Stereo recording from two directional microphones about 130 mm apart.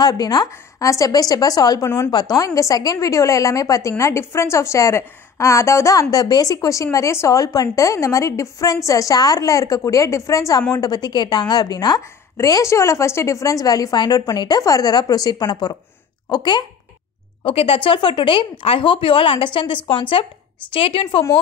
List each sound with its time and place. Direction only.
0.0 s a woman's voice: 30° left (ahead or behind)
17.4 s a woman's voice: 45° left (ahead or behind)